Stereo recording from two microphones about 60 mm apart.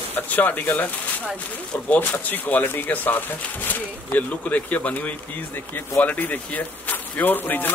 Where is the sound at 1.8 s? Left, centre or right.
Left.